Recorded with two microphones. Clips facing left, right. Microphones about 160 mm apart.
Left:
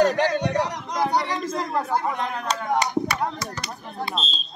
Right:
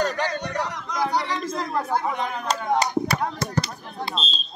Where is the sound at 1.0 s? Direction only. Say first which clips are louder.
Left 1 dB; centre (ahead or behind).